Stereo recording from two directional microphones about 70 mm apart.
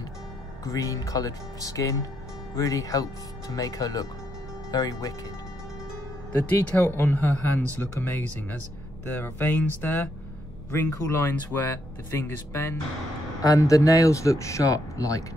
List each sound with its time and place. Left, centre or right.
0.7 s speech: left
6.3 s speech: left
13.4 s speech: left